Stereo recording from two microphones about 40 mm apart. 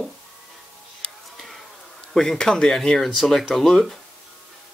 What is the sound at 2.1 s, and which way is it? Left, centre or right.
Speech, centre.